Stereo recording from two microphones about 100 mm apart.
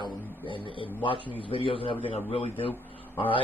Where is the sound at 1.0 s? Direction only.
55° left (ahead or behind).